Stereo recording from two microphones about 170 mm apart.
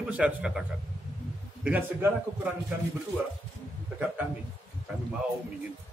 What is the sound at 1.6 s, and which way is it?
Speech, 10° right (ahead or behind).